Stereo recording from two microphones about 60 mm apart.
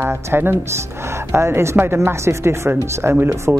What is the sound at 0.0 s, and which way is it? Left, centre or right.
Speech, right.